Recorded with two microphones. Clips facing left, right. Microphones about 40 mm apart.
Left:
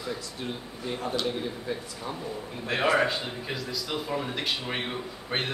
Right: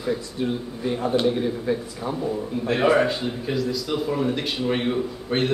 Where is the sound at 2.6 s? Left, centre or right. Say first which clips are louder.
Right 5 dB; centre.